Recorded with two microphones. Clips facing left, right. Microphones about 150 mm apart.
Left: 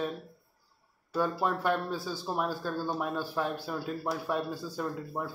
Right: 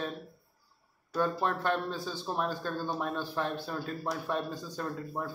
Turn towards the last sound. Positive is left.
turn(degrees=5)  # may be behind; listen again after turning